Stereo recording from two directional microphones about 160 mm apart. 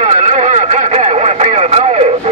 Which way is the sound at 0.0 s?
45° right (ahead or behind).